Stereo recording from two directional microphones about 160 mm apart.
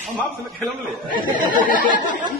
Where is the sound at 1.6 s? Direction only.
60° left (ahead or behind).